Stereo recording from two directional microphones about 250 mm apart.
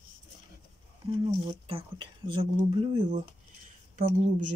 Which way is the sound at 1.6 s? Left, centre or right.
Centre.